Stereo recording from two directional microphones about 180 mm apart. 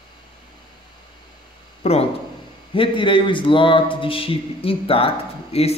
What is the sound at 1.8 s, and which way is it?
A man's voice, 35° left (ahead or behind).